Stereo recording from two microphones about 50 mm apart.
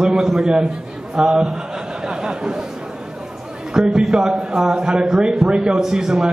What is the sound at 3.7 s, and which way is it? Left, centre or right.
A man's voice, centre.